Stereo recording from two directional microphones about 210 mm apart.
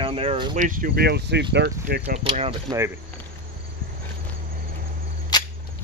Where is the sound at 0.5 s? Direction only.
40° right (ahead or behind).